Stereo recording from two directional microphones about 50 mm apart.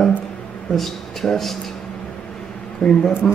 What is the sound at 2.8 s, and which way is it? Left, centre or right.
Speech, centre.